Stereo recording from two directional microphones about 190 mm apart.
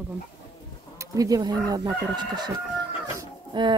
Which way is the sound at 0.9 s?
20° right (ahead or behind).